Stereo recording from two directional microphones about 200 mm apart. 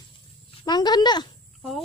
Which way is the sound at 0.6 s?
20° left (ahead or behind).